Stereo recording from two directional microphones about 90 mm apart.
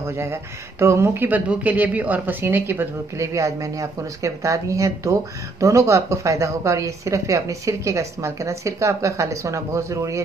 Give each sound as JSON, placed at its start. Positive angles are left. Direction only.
{"t": 0.0, "sound": "a woman's voice", "side_deg": -30}
{"t": 3.3, "sound": "a woman's voice", "side_deg": -35}